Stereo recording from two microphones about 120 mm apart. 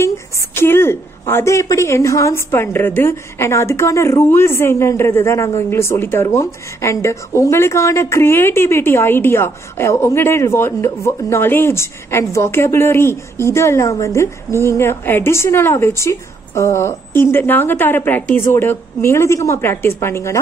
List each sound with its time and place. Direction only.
0.6 s speech: 20° left (ahead or behind)